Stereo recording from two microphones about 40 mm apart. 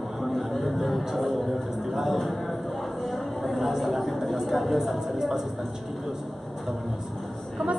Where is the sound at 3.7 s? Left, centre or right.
Centre.